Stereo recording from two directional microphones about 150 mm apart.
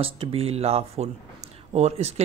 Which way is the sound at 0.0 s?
40° right (ahead or behind).